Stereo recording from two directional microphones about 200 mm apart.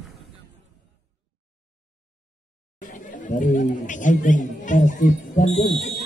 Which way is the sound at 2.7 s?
40° left (ahead or behind).